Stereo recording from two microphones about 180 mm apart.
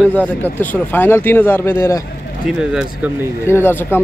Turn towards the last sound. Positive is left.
turn(degrees=10)  # may be behind; listen again after turning